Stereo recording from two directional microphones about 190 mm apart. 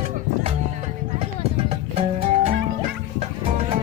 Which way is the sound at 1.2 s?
30° right (ahead or behind).